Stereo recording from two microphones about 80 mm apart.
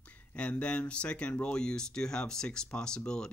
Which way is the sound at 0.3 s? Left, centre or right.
Centre.